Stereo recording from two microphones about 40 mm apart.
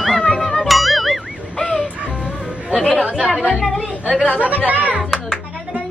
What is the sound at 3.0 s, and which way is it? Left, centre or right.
Chatter, right.